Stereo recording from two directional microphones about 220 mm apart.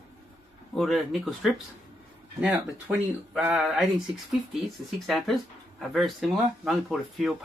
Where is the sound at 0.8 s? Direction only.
Centre (ahead or behind).